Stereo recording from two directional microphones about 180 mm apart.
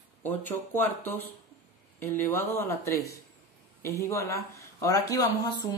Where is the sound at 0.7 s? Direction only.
10° left (ahead or behind).